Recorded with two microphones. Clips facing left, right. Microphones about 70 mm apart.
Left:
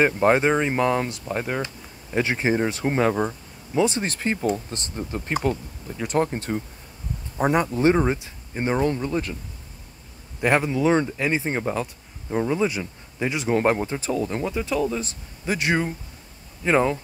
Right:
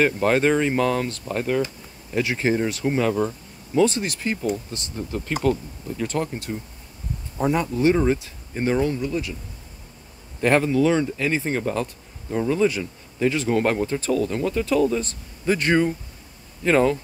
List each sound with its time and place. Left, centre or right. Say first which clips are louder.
0.0 s speech: left 1 dB; left
2.8 s speech: even; left
3.7 s speech: right 2 dB; centre
4.0 s speech: left 1 dB; left
5.4 s speech: right 3 dB; centre
6.1 s speech: left 8 dB; left
8.8 s speech: left 1 dB; left
10.4 s speech: right 2 dB; centre